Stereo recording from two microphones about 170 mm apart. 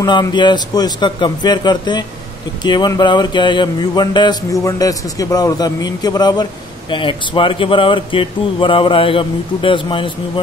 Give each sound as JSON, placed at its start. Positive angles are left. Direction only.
{"t": 0.0, "sound": "a man's voice", "side_deg": 25}